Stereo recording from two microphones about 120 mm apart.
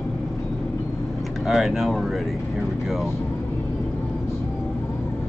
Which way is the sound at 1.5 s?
5° right (ahead or behind).